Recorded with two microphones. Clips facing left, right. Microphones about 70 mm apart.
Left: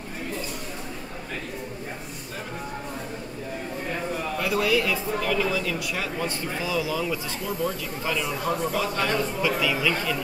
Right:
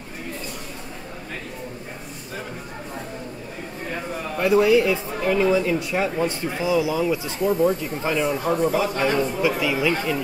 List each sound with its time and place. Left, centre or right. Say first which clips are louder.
4.4 s speech: right 8 dB; right